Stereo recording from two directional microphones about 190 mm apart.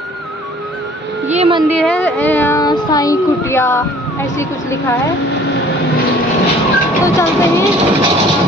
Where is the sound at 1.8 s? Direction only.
10° left (ahead or behind).